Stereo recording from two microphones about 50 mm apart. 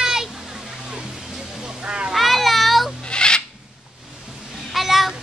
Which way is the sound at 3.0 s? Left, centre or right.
Centre.